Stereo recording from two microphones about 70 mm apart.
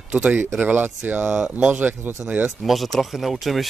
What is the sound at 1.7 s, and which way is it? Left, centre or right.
Speech, right.